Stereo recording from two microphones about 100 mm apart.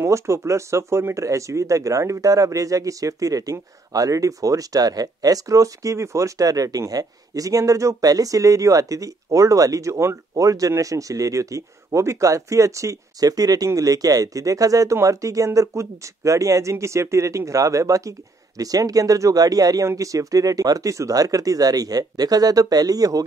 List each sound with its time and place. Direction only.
0.0 s speech: 30° right (ahead or behind)